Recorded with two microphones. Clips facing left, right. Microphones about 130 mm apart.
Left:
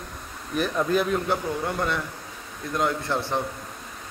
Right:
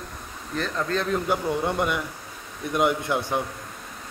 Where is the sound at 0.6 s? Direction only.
15° left (ahead or behind).